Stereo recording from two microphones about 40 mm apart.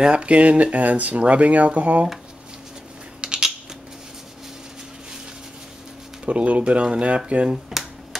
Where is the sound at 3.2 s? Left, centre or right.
Right.